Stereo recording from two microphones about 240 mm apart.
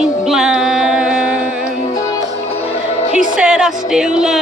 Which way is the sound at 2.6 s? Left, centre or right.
Left.